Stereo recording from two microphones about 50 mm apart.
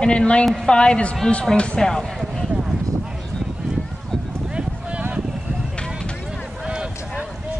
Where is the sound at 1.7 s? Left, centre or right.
Centre.